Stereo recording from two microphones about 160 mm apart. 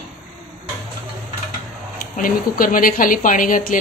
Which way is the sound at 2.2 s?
60° left (ahead or behind).